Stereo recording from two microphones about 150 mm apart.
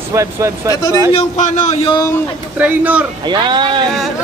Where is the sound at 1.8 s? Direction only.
25° left (ahead or behind).